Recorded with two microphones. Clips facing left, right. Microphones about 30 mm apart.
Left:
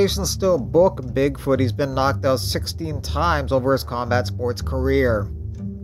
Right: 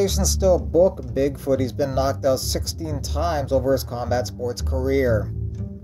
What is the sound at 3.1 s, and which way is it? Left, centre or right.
Speech, left.